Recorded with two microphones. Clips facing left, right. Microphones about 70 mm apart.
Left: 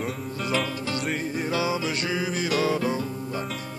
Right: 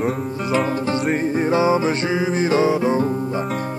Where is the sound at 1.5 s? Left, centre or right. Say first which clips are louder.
Right 9 dB; right.